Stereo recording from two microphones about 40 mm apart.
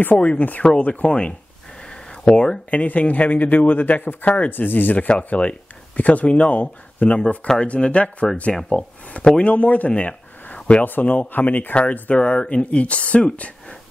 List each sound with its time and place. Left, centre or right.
0.0 s a man's voice: left
1.8 s a sound: centre
2.7 s a man's voice: left
5.0 s a man's voice: left